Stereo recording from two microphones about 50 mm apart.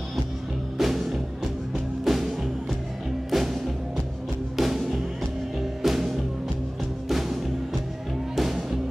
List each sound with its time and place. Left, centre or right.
0.7 s music: centre
8.4 s music: centre